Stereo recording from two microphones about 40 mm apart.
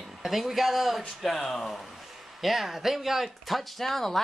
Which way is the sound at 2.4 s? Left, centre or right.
Centre.